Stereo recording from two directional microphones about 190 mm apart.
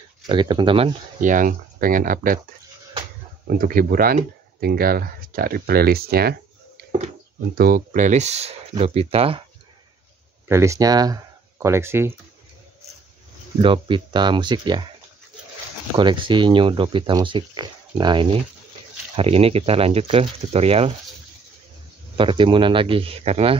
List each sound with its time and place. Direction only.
0.3 s speech: 25° right (ahead or behind)
1.2 s speech: 45° right (ahead or behind)
3.4 s speech: 50° right (ahead or behind)
7.5 s speech: 50° right (ahead or behind); by 9.4 s 30° right (ahead or behind)
10.5 s speech: 15° right (ahead or behind)
13.6 s speech: 25° right (ahead or behind)
16.0 s speech: 25° right (ahead or behind)
22.1 s speech: 25° right (ahead or behind)